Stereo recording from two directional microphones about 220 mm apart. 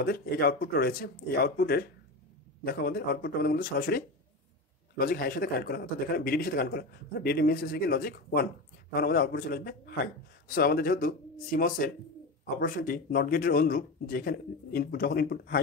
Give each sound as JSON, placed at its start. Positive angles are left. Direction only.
{"t": 0.0, "sound": "a man's voice", "side_deg": 45}